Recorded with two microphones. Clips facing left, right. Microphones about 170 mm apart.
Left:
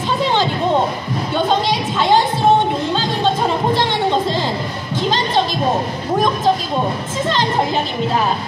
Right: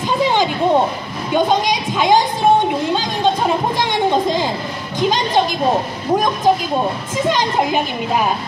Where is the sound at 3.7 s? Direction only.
15° right (ahead or behind).